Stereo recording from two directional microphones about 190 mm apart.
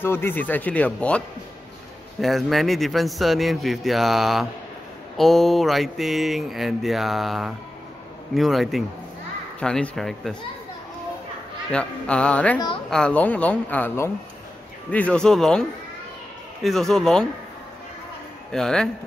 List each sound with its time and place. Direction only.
0.0 s speech: 10° left (ahead or behind)
11.7 s speech: 5° left (ahead or behind)
12.5 s a woman's voice: 25° left (ahead or behind)
12.9 s speech: 5° left (ahead or behind)
16.6 s speech: centre (ahead or behind)
18.5 s speech: 5° left (ahead or behind)